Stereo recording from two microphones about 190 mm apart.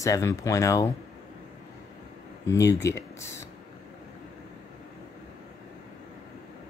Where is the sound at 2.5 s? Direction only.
15° left (ahead or behind).